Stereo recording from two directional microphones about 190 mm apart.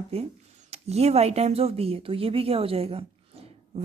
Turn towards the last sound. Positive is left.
turn(degrees=-30)  # may be behind; listen again after turning